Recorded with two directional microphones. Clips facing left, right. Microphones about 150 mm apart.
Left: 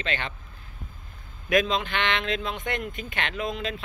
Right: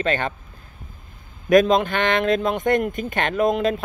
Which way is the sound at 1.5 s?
45° right (ahead or behind).